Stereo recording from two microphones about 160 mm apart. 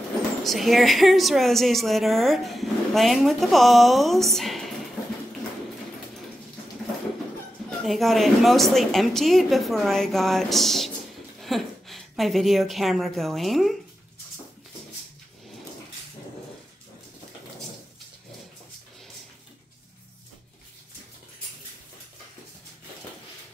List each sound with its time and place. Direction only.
0.4 s a woman's voice: centre (ahead or behind)
7.8 s a woman's voice: centre (ahead or behind)